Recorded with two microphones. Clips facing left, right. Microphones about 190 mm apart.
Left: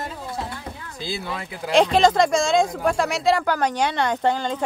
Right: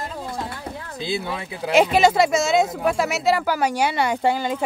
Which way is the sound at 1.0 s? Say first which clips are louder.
Right 3 dB; 25° right (ahead or behind).